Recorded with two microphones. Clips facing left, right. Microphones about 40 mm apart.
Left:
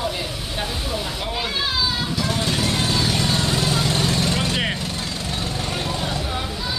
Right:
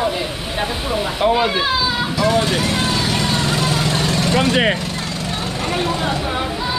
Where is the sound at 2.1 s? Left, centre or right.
Right.